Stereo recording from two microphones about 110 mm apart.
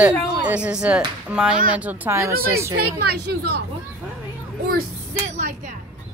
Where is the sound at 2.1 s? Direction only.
25° right (ahead or behind).